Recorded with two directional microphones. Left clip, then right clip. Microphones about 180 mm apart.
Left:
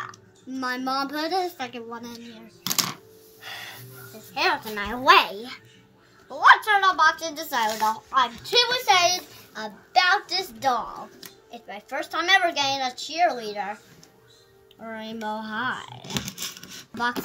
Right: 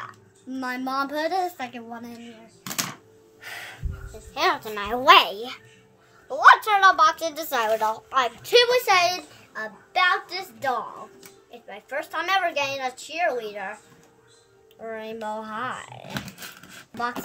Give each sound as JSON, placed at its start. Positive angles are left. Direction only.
{"t": 0.0, "sound": "a child's voice", "side_deg": -20}
{"t": 2.6, "sound": "typing", "side_deg": 25}
{"t": 3.3, "sound": "gasp", "side_deg": -35}
{"t": 4.4, "sound": "a woman's voice", "side_deg": -35}
{"t": 9.9, "sound": "a child's voice", "side_deg": -10}
{"t": 15.0, "sound": "a woman's voice", "side_deg": -35}